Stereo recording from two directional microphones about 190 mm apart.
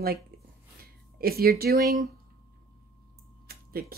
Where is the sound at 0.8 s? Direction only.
55° right (ahead or behind).